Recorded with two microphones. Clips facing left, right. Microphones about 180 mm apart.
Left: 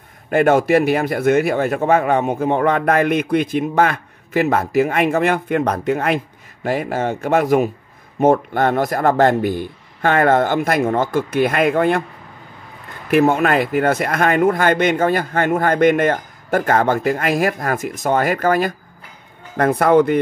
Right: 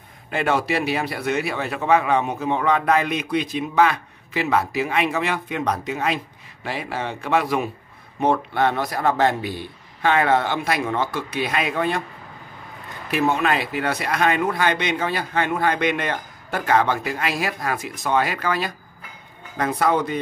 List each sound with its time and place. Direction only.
0.3 s a man's voice: 50° left (ahead or behind)
13.1 s a man's voice: 50° left (ahead or behind)